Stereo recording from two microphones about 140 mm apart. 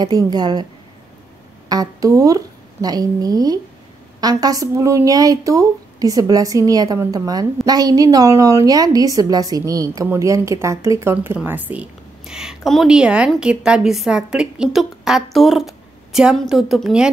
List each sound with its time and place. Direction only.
0.0 s a woman's voice: 30° right (ahead or behind)
1.7 s a woman's voice: 25° right (ahead or behind); by 17.1 s 5° right (ahead or behind)